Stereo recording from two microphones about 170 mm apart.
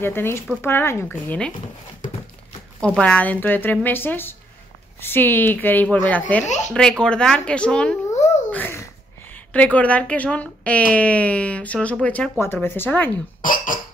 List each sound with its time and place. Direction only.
0.0 s a woman's voice: 15° left (ahead or behind)
3.0 s a woman's voice: 10° left (ahead or behind)
8.1 s a sound: 45° left (ahead or behind)
8.5 s a sound: 10° left (ahead or behind)
9.3 s a woman's voice: 10° left (ahead or behind)
13.4 s speech: 55° left (ahead or behind)